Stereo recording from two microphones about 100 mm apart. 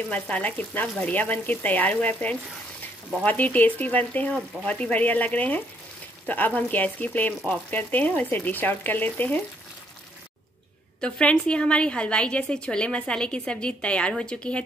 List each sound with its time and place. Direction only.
0.1 s a woman's voice: 15° left (ahead or behind)
11.0 s a woman's voice: 10° left (ahead or behind)